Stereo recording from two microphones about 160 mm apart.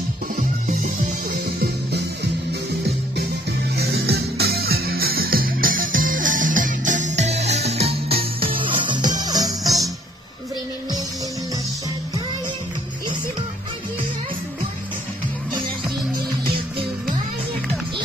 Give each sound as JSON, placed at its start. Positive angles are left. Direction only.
{"t": 1.6, "sound": "music", "side_deg": -90}
{"t": 3.7, "sound": "music", "side_deg": -85}